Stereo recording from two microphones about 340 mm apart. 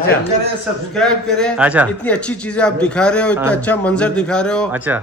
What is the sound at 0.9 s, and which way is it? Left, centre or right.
A man's voice, centre.